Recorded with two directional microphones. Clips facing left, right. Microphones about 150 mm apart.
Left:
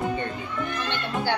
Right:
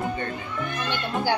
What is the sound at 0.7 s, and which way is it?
Speech, 10° right (ahead or behind).